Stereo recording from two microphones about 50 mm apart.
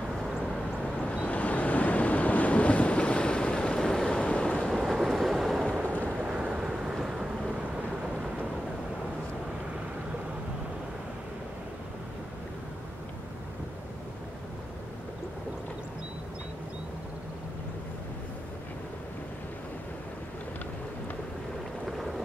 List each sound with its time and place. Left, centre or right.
0.9 s waves: left
4.7 s vehicle: centre
6.2 s vehicle: right
21.8 s a sound: centre